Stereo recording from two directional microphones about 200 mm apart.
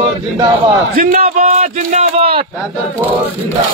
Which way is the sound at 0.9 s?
45° right (ahead or behind).